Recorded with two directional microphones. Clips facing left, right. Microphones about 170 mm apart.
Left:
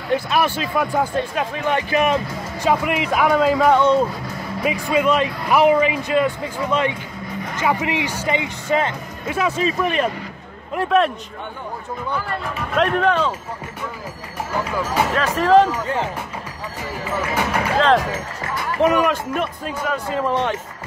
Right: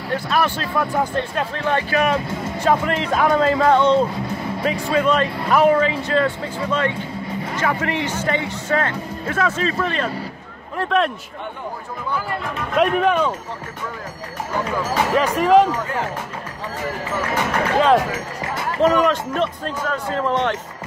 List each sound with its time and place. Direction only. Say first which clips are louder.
0.1 s speech: left 2 dB; 10° left (ahead or behind)
10.8 s a man's voice: left 2 dB; 5° left (ahead or behind)
12.5 s speech: right 1 dB; 5° right (ahead or behind)
15.1 s speech: even; 10° right (ahead or behind)
17.7 s speech: right 1 dB; 10° right (ahead or behind)
18.8 s speech: right 1 dB; 15° left (ahead or behind)